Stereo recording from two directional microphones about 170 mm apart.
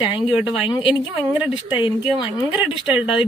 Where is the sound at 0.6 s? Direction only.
30° left (ahead or behind).